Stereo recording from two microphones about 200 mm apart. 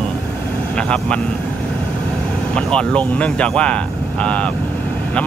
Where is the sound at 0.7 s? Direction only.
5° left (ahead or behind).